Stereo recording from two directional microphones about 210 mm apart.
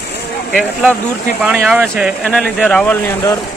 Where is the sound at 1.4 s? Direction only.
5° right (ahead or behind); by 3.3 s 10° left (ahead or behind).